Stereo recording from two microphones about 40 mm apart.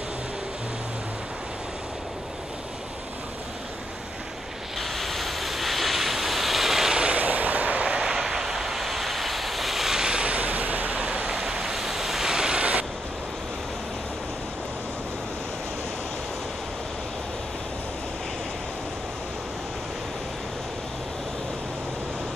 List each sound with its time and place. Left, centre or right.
4.7 s waves: centre
7.0 s vehicle: right
7.8 s vehicle: centre
10.0 s a sound: right
11.2 s waves: centre
12.5 s a sound: right